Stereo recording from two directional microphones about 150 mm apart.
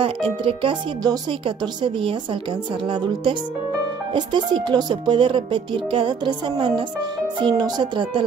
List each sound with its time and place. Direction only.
0.0 s speech: 35° right (ahead or behind)
4.1 s speech: 30° right (ahead or behind)